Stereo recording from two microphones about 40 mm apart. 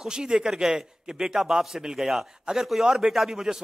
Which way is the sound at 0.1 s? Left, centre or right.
Centre.